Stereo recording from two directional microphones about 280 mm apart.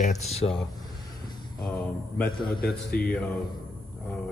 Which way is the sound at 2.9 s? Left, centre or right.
Left.